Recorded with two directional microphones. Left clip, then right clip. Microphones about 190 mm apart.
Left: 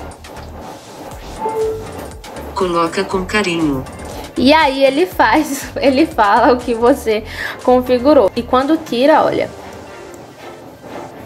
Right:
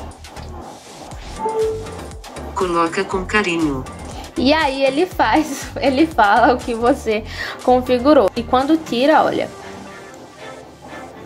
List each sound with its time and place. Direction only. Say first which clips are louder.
2.5 s a woman's voice: left 2 dB; 10° right (ahead or behind)